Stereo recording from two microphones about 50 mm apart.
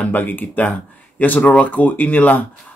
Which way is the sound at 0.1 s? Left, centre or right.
Left.